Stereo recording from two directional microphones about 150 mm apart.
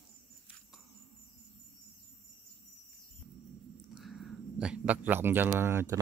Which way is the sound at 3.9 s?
Centre (ahead or behind).